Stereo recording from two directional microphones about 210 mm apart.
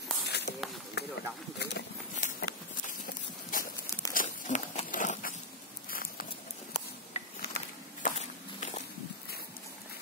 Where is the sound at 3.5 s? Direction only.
40° left (ahead or behind).